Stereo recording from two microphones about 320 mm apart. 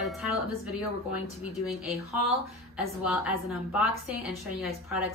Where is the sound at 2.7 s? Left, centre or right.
Centre.